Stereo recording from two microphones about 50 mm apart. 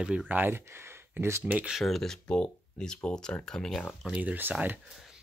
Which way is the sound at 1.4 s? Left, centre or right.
Right.